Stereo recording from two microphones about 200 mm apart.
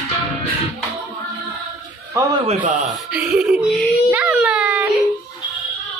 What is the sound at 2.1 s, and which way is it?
Speech, 15° right (ahead or behind).